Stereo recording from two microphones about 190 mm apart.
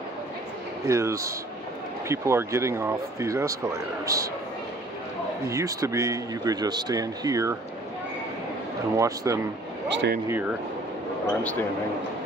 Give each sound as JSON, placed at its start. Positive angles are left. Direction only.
{"t": 0.8, "sound": "speech", "side_deg": -15}
{"t": 5.5, "sound": "speech", "side_deg": -15}
{"t": 8.9, "sound": "speech", "side_deg": -15}
{"t": 9.8, "sound": "speech", "side_deg": -65}
{"t": 10.2, "sound": "speech", "side_deg": -10}